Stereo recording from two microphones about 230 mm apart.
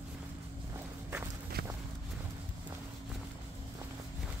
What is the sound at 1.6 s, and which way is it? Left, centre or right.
Walk, right.